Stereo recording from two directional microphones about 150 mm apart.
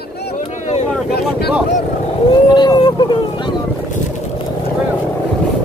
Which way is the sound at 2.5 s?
30° left (ahead or behind).